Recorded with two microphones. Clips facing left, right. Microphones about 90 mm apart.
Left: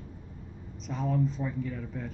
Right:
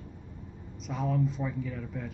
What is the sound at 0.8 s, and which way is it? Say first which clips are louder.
Speech: even; centre (ahead or behind).